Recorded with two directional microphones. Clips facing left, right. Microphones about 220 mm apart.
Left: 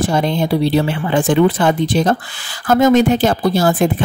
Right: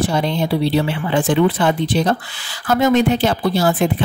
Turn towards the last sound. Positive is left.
turn(degrees=45)  # may be behind; listen again after turning